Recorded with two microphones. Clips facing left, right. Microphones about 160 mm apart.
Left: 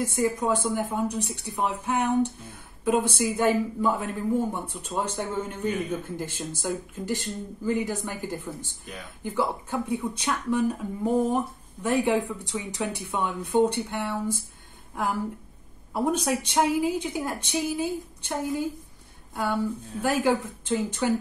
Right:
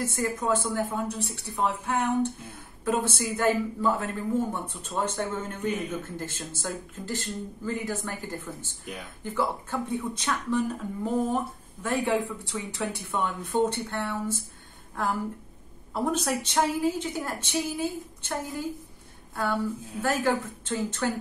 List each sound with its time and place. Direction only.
0.0 s speech: 15° left (ahead or behind)
19.3 s speech: 15° left (ahead or behind)